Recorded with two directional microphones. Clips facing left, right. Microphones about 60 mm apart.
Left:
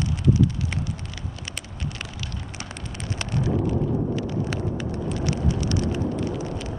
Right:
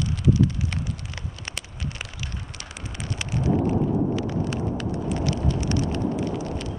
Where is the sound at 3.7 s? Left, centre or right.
Centre.